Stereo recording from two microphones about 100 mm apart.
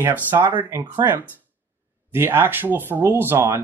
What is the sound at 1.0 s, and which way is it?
Speech, 30° right (ahead or behind).